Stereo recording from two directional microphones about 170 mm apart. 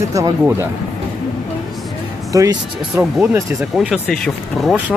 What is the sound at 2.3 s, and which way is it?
Speech, 20° right (ahead or behind).